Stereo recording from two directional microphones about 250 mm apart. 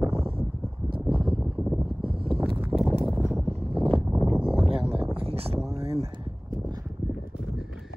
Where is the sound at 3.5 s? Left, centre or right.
Right.